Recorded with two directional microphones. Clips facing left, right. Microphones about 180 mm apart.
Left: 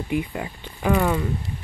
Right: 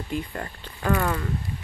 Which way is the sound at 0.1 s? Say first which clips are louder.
Left 5 dB; 10° left (ahead or behind).